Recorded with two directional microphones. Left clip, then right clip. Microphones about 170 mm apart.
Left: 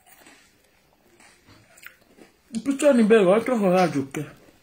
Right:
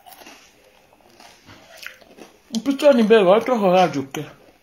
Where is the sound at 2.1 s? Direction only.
5° left (ahead or behind).